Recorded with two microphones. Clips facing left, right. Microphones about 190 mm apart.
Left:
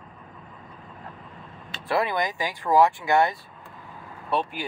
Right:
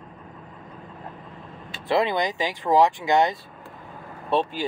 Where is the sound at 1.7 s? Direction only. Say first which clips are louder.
Right 3 dB; 20° right (ahead or behind).